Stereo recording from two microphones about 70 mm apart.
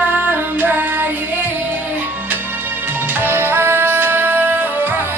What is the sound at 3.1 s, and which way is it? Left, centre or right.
Music, right.